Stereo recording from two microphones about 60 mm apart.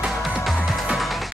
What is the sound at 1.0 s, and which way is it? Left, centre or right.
Music, centre.